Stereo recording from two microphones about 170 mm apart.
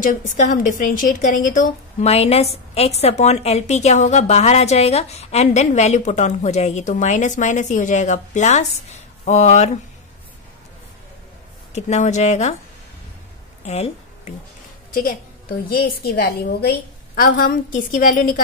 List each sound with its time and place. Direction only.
0.0 s a woman's voice: 50° left (ahead or behind)
11.7 s a woman's voice: 45° left (ahead or behind)
13.7 s a sound: 40° left (ahead or behind)
15.0 s a woman's voice: 60° left (ahead or behind)